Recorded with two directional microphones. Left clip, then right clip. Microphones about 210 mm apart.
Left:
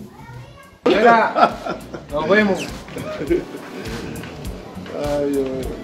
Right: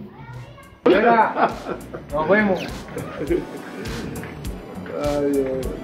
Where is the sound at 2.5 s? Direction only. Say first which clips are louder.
Even; centre (ahead or behind).